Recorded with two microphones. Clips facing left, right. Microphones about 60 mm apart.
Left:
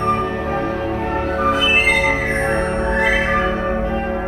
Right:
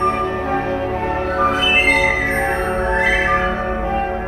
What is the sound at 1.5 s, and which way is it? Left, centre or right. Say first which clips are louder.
Music: even; right.